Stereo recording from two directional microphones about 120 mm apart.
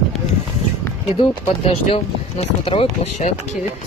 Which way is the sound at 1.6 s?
60° left (ahead or behind).